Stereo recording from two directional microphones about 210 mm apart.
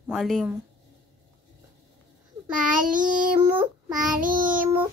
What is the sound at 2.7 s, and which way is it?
Child singing, 40° right (ahead or behind).